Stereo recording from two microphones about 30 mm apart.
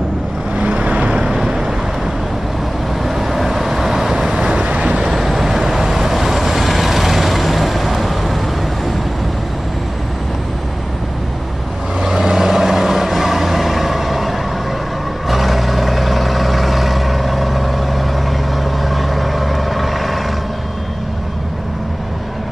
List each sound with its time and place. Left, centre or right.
0.6 s vehicle: right
1.2 s vehicle: right
3.1 s vehicle: centre
4.3 s vehicle: right
4.6 s vehicle: right
5.1 s vehicle: centre
12.0 s vehicle: centre